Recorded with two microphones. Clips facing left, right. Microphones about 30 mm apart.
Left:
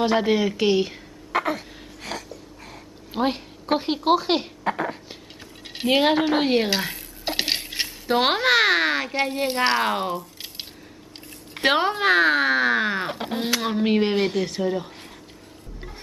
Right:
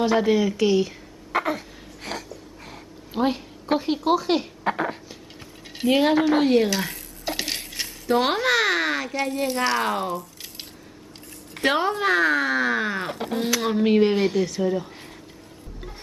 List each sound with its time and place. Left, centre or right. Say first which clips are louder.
0.0 s speech: even; left
1.3 s a sound: even; centre
3.1 s a woman's voice: even; centre
4.6 s speech: right 1 dB; centre
5.8 s speech: even; left
6.9 s coin: left 1 dB; left
11.5 s speech: left 1 dB; left
13.6 s speech: right 3 dB; centre